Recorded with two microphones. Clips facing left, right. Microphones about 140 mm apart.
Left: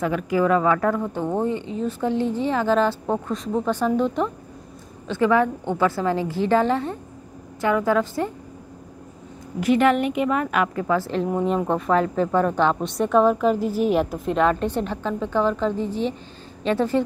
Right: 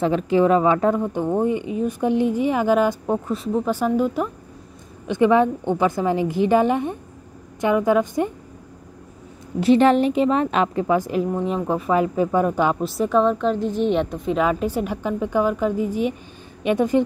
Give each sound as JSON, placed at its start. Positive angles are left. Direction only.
{"t": 0.0, "sound": "speech", "side_deg": -25}
{"t": 5.0, "sound": "a woman's voice", "side_deg": -20}
{"t": 9.6, "sound": "a woman's voice", "side_deg": -30}
{"t": 11.3, "sound": "speech", "side_deg": 0}